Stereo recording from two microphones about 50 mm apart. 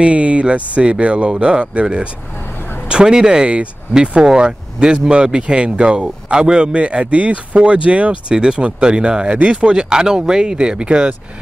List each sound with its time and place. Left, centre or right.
0.0 s speech: right